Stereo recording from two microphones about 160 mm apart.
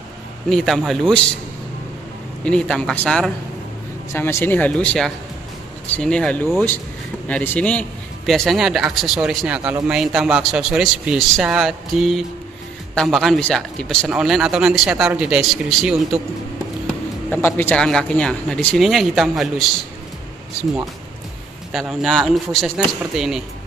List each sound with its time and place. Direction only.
0.5 s a man's voice: centre (ahead or behind)
2.4 s a man's voice: 5° left (ahead or behind)
9.6 s a man's voice: 20° right (ahead or behind)
9.8 s a man's voice: 5° right (ahead or behind)
17.3 s a man's voice: 15° left (ahead or behind)
21.7 s a man's voice: centre (ahead or behind)